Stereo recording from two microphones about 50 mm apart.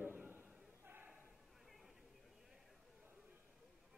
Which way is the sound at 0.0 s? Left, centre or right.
Right.